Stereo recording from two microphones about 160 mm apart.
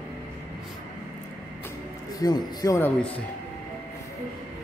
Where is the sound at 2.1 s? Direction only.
25° left (ahead or behind).